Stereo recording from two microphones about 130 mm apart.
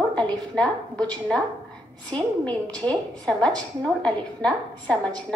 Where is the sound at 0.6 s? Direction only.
5° left (ahead or behind).